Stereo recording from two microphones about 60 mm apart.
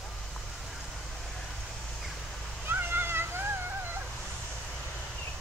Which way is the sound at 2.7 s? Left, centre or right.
Right.